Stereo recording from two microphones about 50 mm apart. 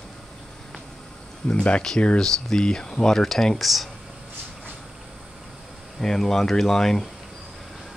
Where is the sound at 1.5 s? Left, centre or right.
Left; by 3.9 s centre.